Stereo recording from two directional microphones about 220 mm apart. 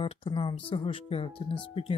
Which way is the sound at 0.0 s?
25° left (ahead or behind).